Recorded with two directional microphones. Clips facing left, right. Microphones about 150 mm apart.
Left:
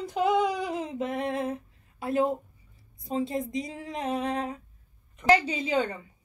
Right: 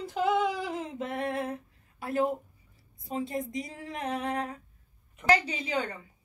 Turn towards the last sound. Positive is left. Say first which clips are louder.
# left 5 dB
turn(degrees=25)  # may be behind; listen again after turning